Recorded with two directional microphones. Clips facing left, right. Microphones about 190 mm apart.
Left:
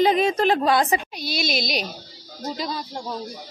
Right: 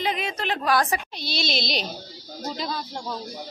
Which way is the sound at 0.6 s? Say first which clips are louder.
Left 3 dB; 20° left (ahead or behind).